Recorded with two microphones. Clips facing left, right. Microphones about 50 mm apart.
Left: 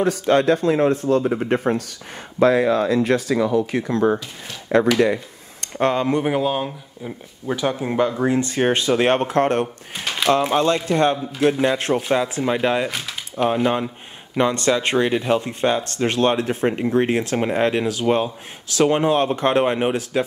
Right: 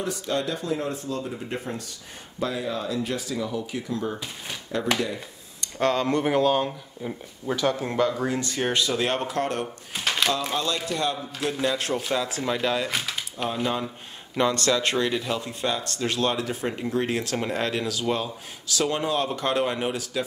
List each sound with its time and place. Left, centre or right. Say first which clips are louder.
0.0 s speech: left 10 dB; left
4.9 s a sound: left 10 dB; left
5.8 s speech: left 4 dB; left
9.9 s a sound: left 4 dB; centre
10.5 s speech: left 9 dB; left
13.4 s speech: left 10 dB; left
14.3 s speech: left 4 dB; left